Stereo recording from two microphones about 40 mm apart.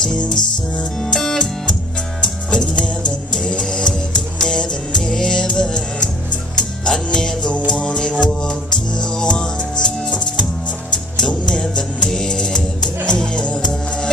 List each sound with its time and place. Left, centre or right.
0.0 s music: centre